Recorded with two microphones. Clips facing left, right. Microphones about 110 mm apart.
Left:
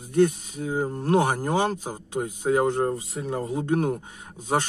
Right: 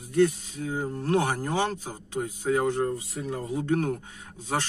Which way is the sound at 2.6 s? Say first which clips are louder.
Left 3 dB; 30° left (ahead or behind).